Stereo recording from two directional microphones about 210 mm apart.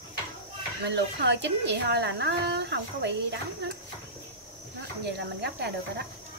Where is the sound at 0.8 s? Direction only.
55° right (ahead or behind).